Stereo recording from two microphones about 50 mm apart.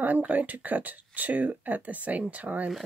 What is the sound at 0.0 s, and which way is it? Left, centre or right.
Speech, right.